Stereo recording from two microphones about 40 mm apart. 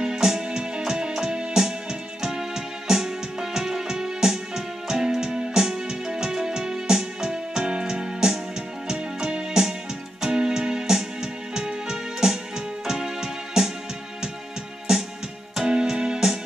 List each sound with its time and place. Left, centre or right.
0.0 s music: centre
14.9 s music: centre